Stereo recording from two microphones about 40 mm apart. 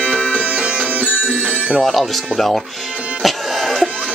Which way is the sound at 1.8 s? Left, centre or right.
Centre.